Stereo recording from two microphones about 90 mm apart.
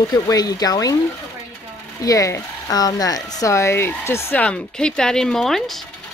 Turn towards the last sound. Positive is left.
turn(degrees=5)  # may be behind; listen again after turning